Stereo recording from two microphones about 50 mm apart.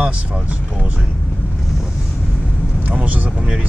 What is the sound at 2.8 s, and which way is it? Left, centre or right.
Speech, right.